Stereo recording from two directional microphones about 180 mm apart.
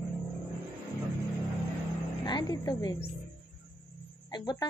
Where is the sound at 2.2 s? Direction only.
25° left (ahead or behind).